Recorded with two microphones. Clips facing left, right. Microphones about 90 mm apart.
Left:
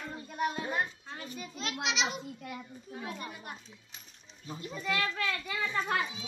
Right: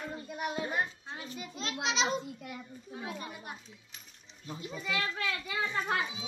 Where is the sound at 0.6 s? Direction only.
10° right (ahead or behind).